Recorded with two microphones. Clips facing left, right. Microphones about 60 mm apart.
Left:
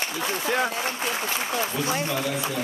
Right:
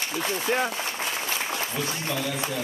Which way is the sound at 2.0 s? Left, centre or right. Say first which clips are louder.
Left 2 dB; centre.